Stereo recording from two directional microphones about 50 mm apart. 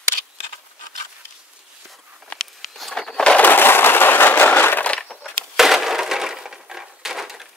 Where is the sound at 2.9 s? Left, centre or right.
Centre.